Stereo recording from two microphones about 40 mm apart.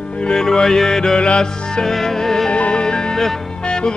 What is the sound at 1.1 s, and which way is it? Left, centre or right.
Music, left.